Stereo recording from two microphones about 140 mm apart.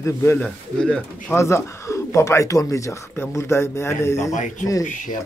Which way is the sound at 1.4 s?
20° left (ahead or behind).